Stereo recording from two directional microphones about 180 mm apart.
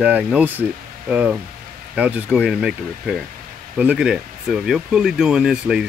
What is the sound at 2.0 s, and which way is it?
Speech, 10° right (ahead or behind).